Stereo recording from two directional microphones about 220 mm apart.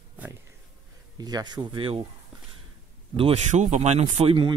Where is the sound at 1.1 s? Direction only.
20° right (ahead or behind).